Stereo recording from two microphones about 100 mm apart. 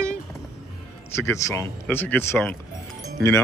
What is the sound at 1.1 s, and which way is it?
Mantra, 30° left (ahead or behind).